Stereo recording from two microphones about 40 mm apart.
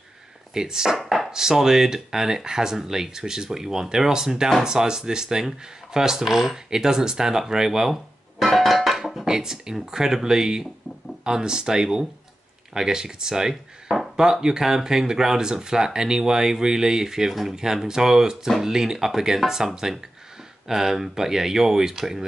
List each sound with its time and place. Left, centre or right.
0.6 s speech: centre
1.0 s chopping: centre
1.3 s speech: centre
8.4 s music: centre
9.2 s speech: centre